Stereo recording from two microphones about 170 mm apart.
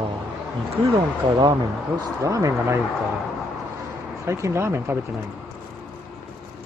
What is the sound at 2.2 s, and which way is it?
Speech, 20° right (ahead or behind).